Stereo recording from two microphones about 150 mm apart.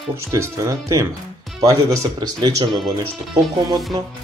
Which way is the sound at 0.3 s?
20° right (ahead or behind).